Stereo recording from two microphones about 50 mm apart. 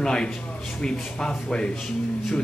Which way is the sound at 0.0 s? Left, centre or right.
Centre.